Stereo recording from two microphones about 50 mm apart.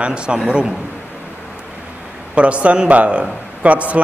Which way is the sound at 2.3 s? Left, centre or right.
Right.